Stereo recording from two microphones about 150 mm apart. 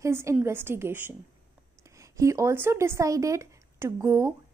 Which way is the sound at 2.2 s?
20° right (ahead or behind).